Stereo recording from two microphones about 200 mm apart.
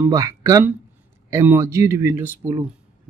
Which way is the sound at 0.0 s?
15° right (ahead or behind).